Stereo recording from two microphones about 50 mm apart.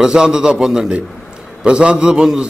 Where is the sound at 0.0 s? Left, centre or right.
Centre.